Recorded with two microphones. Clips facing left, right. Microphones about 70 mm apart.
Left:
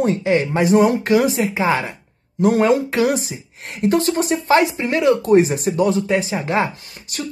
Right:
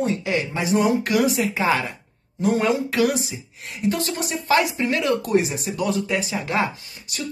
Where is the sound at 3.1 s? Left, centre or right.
Left.